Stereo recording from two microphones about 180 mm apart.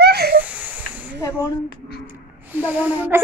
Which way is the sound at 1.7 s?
60° left (ahead or behind).